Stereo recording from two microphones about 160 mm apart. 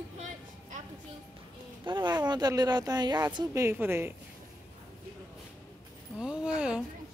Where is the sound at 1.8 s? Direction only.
25° right (ahead or behind).